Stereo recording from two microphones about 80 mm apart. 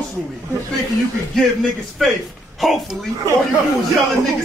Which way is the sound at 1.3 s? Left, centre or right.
Centre.